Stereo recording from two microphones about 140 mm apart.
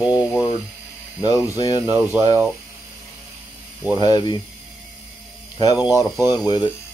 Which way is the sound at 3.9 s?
30° left (ahead or behind).